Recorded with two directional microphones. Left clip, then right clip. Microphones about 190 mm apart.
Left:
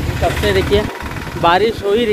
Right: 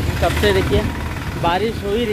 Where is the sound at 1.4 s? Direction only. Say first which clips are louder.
Left 6 dB; 30° left (ahead or behind).